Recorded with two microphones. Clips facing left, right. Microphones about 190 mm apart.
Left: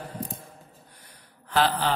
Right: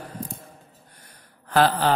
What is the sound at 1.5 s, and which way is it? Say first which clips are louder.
Speech: right 4 dB; 45° right (ahead or behind).